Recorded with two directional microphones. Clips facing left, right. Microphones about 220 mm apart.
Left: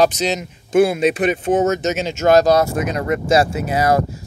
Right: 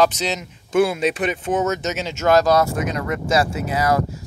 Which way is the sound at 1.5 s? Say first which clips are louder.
Left 3 dB; 40° left (ahead or behind).